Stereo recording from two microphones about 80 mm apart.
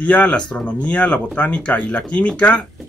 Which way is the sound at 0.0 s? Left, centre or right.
Centre.